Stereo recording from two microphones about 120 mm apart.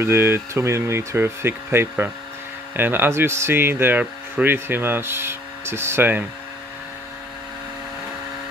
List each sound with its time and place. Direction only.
0.0 s speech: 20° right (ahead or behind)